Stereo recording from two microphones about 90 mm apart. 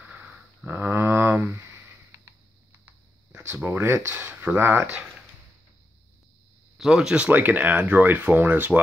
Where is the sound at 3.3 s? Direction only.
25° right (ahead or behind).